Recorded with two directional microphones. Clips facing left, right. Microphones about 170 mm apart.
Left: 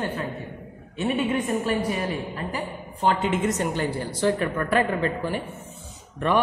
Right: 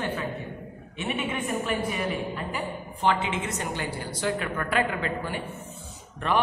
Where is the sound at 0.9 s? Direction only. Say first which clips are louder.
Left 6 dB; 40° left (ahead or behind).